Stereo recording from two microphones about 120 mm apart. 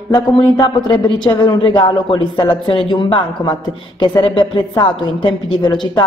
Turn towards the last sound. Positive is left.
turn(degrees=40)  # may be behind; listen again after turning